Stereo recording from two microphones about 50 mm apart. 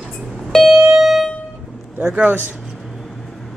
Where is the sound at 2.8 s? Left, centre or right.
Centre.